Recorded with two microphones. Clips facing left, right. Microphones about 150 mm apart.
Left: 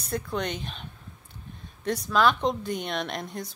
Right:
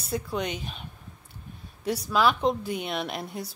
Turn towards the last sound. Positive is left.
turn(degrees=-5)  # may be behind; listen again after turning